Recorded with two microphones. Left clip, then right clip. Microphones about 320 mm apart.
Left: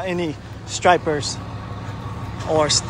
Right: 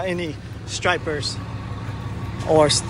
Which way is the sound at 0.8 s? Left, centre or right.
Centre.